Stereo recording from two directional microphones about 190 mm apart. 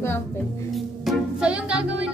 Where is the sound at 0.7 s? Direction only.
Centre (ahead or behind).